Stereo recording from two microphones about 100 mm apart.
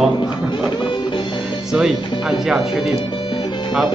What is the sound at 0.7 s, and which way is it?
Music, 50° left (ahead or behind).